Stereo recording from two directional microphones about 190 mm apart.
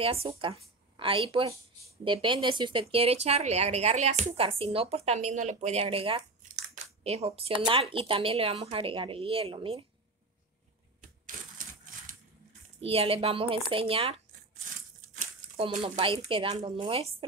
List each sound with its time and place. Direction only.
0.0 s a woman's voice: 30° right (ahead or behind)
11.0 s typewriter: 45° right (ahead or behind)
12.8 s speech: 30° right (ahead or behind)